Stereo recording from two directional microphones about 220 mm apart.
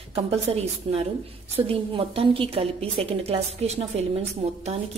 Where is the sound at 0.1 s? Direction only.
25° right (ahead or behind).